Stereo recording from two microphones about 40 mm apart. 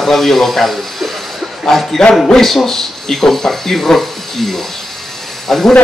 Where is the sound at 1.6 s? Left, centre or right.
Centre.